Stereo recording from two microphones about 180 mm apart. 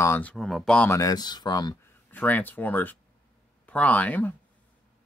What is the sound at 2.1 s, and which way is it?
Speech, 10° left (ahead or behind).